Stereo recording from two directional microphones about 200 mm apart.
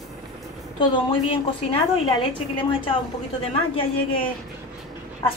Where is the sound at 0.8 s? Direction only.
25° left (ahead or behind).